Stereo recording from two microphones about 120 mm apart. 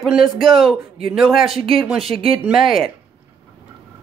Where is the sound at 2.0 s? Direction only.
50° right (ahead or behind).